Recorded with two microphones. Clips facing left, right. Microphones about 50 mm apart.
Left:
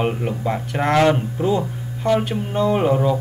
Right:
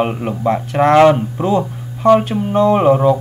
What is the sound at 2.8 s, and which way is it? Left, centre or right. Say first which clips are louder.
Speech: right 6 dB; centre.